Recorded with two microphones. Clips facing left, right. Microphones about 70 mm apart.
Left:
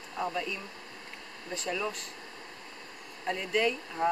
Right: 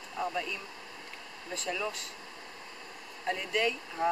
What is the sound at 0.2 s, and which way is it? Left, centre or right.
Speech, centre.